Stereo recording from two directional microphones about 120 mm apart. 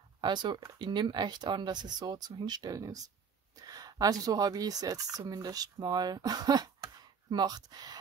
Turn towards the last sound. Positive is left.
turn(degrees=-35)  # may be behind; listen again after turning